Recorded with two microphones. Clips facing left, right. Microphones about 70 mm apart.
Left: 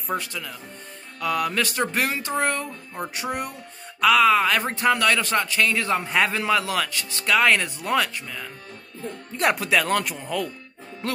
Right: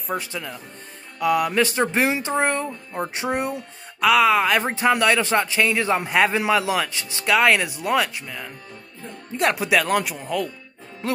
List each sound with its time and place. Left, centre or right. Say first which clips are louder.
0.2 s speech: right 2 dB; right
4.0 s speech: even; centre
4.6 s speech: right 2 dB; centre
7.2 s speech: right 2 dB; centre
9.6 s speech: right 2 dB; centre